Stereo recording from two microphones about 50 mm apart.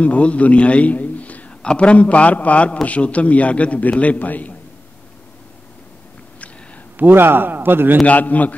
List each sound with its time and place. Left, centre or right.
0.0 s a man's voice: left
7.0 s a man's voice: right
8.0 s a man's voice: left